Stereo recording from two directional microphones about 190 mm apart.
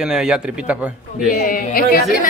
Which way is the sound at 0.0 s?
5° right (ahead or behind).